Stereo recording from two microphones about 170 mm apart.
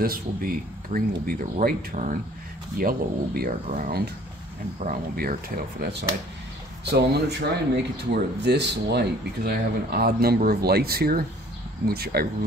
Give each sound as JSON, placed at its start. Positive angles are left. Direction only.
{"t": 0.0, "sound": "speech", "side_deg": -60}